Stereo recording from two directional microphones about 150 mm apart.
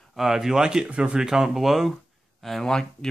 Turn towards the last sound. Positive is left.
turn(degrees=5)  # may be behind; listen again after turning